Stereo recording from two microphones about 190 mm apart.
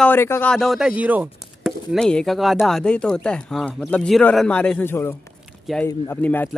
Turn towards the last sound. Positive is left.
turn(degrees=10)  # may be behind; listen again after turning